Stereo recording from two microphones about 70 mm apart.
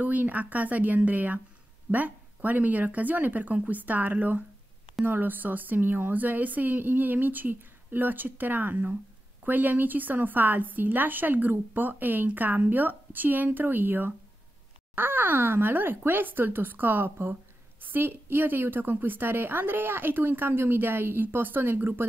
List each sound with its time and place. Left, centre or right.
0.0 s a woman's voice: right